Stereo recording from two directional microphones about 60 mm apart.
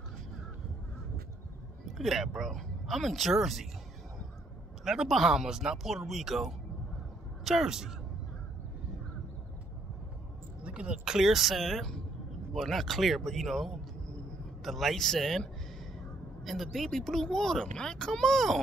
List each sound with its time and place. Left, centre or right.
2.0 s speech: centre
4.8 s speech: centre
10.6 s speech: centre
11.1 s a man's voice: centre